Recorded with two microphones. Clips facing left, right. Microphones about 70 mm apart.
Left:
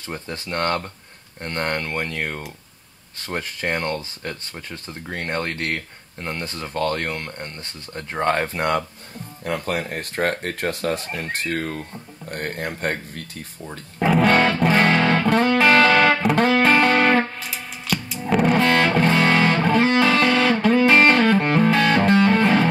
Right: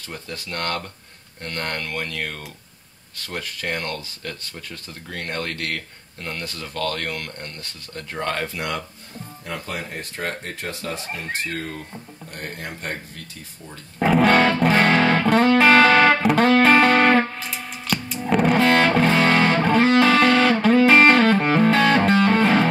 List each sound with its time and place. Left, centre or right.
0.1 s speech: left
9.4 s speech: left
13.9 s music: centre